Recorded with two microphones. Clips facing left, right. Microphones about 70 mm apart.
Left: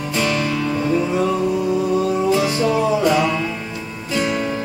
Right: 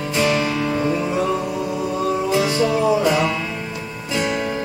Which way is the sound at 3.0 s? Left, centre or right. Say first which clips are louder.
Left 1 dB; right.